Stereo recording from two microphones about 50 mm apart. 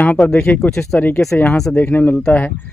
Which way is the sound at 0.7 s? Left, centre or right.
Centre.